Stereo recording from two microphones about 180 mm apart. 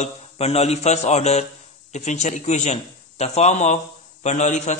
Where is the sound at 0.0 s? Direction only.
35° left (ahead or behind).